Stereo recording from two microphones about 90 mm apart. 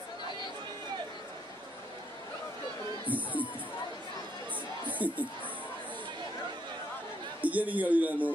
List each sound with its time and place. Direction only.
3.1 s a man's voice: 20° right (ahead or behind)
4.8 s a sound: 15° right (ahead or behind)
7.4 s a man's voice: 15° right (ahead or behind)